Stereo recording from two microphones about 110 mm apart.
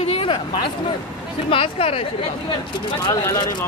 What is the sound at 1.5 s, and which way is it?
Speech, 55° left (ahead or behind).